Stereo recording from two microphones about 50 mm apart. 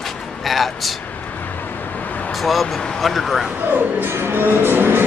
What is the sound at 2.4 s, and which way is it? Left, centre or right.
Speech, centre.